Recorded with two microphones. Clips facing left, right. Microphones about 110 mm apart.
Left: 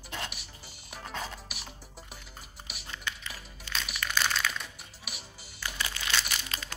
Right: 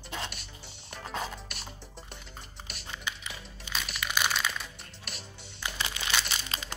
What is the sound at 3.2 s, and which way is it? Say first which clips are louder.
Music: right 1 dB; 5° right (ahead or behind).